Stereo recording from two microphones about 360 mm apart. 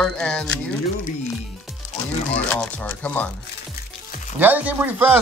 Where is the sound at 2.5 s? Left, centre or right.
Centre.